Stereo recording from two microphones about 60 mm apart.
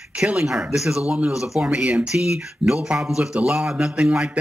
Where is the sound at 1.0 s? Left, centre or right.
Right.